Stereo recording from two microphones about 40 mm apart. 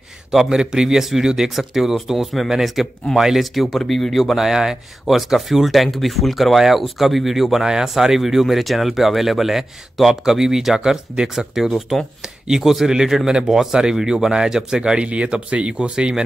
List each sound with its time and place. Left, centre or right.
0.3 s a man's voice: centre
3.9 s speech: centre
4.4 s speech: centre
15.0 s speech: right